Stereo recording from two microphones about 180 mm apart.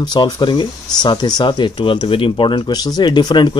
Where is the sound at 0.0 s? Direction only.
25° left (ahead or behind).